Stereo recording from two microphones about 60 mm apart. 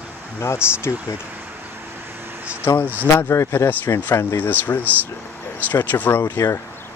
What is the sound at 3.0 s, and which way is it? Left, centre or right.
Speech, left.